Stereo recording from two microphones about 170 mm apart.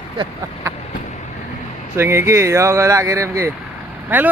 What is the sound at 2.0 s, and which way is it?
Speech, 15° right (ahead or behind).